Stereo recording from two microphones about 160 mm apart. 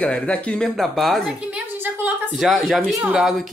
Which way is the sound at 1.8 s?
10° right (ahead or behind).